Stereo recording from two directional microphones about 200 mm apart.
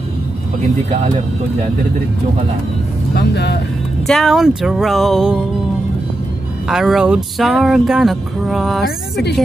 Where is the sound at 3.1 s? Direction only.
55° left (ahead or behind).